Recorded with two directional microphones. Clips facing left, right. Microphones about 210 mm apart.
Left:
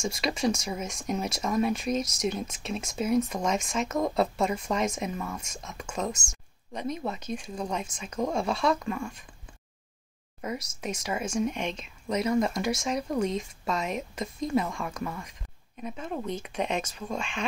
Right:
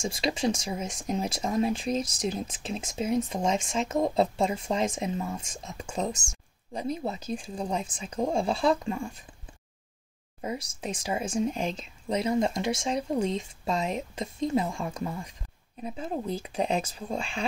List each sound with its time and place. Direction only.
0.0 s speech: 30° right (ahead or behind)
10.4 s speech: 30° right (ahead or behind)